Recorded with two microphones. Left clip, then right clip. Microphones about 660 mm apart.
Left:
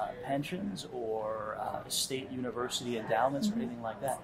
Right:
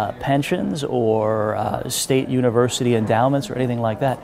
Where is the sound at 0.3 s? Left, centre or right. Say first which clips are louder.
Right 15 dB; right.